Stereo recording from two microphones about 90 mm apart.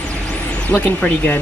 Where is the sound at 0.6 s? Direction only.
15° left (ahead or behind).